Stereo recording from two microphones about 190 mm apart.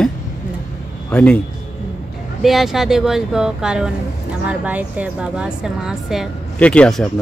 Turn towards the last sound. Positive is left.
turn(degrees=5)  # may be behind; listen again after turning